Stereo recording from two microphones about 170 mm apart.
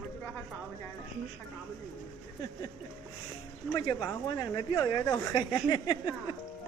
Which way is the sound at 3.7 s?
25° left (ahead or behind).